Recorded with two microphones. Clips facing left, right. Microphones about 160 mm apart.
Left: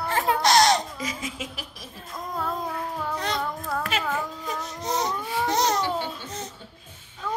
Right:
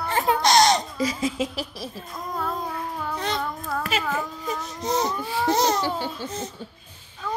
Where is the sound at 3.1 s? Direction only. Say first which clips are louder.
Right 2 dB; centre (ahead or behind).